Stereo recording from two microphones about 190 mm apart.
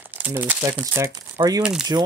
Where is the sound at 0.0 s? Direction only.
10° right (ahead or behind).